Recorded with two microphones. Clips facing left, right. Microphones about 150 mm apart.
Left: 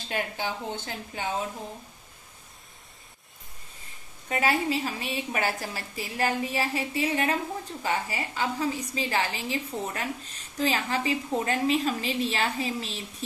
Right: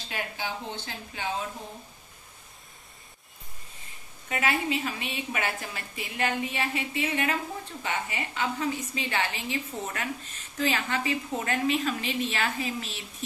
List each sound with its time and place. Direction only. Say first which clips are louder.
0.1 s speech: left 3 dB; 45° left (ahead or behind)
4.3 s a woman's voice: left 2 dB; 35° left (ahead or behind)